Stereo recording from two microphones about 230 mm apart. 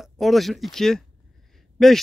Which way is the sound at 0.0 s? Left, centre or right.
Centre.